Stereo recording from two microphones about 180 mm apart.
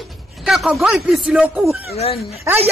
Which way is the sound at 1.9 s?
35° left (ahead or behind).